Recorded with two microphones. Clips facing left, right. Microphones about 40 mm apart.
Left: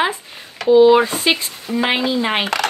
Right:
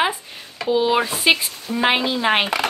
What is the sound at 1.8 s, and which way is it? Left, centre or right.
Speech, right.